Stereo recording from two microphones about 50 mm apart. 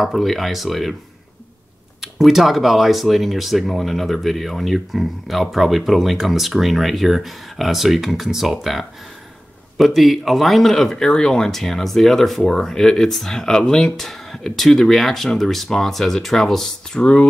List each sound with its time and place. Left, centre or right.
0.0 s speech: centre
2.0 s speech: centre
17.0 s speech: left